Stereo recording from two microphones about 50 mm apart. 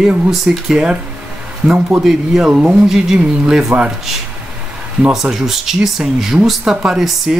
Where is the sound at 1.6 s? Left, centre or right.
Right.